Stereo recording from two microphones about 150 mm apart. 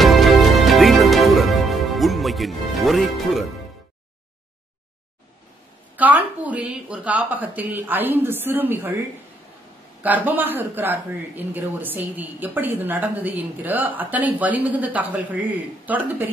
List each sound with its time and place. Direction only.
0.0 s music: centre (ahead or behind)
5.9 s speech: 10° right (ahead or behind)
10.0 s speech: 10° right (ahead or behind)